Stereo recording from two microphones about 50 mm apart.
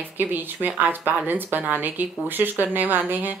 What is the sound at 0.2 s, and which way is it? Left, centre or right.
Speech, right.